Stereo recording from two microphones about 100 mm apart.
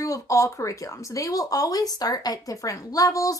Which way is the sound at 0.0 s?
35° left (ahead or behind).